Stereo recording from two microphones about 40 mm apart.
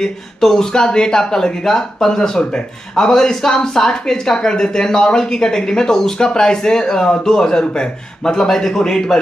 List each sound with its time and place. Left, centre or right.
0.0 s a woman's voice: centre